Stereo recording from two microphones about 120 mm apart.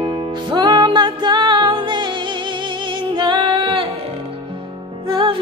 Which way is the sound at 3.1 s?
40° right (ahead or behind).